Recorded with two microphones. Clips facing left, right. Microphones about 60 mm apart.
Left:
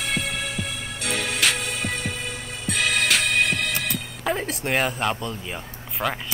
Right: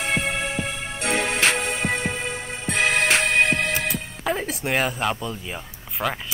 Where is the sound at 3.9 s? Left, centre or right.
Centre.